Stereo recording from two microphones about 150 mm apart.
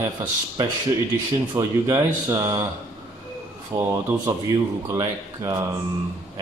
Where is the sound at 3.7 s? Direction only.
25° right (ahead or behind).